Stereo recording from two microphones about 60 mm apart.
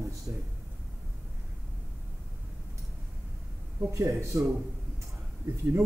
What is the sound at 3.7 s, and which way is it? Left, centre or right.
Speech, right.